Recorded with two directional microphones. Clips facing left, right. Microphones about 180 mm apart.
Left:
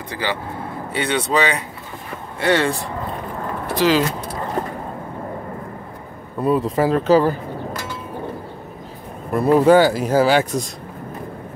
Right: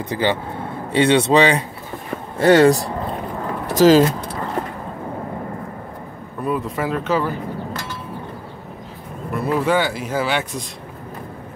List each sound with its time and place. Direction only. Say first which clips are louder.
0.1 s speech: right 4 dB; 25° right (ahead or behind)
2.3 s speech: right 7 dB; 40° right (ahead or behind)
6.4 s speech: left 5 dB; 35° left (ahead or behind)
9.3 s speech: left 6 dB; 40° left (ahead or behind)